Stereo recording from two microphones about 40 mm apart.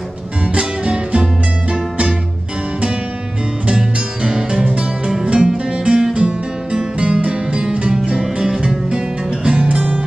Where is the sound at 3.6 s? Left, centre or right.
Right.